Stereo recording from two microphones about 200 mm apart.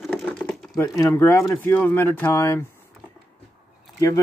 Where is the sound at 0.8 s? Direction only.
15° left (ahead or behind).